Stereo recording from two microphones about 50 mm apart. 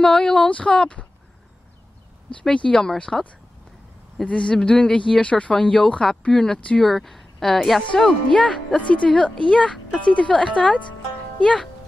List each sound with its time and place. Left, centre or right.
0.0 s speech: centre
2.5 s speech: centre
4.3 s speech: centre
6.8 s speech: centre
8.7 s speech: left